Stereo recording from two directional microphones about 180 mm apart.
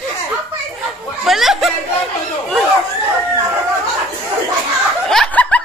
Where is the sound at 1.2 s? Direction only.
Centre (ahead or behind).